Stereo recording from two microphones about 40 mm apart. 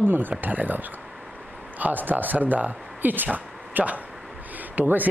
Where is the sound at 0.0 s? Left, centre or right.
Right.